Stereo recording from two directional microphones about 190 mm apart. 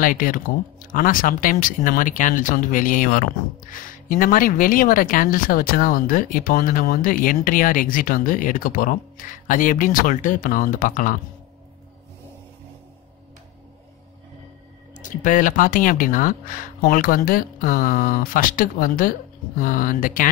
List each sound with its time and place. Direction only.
0.0 s speech: 45° left (ahead or behind)
15.0 s speech: 40° left (ahead or behind)